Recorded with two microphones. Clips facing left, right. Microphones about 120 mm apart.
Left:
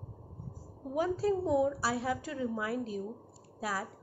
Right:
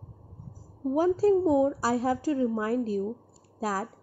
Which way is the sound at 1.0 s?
40° right (ahead or behind).